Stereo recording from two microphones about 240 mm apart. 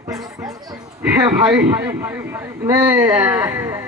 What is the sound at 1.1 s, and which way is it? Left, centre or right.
A man's voice, centre.